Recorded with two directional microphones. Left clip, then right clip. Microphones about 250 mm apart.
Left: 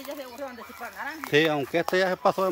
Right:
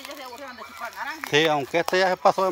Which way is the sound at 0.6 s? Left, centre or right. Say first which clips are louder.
Right 3 dB; centre.